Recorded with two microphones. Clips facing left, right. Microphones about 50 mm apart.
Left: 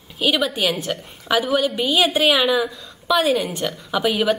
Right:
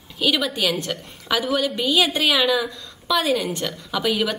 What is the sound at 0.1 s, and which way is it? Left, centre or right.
A woman's voice, centre.